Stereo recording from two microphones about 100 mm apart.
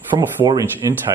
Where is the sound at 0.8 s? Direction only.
35° right (ahead or behind).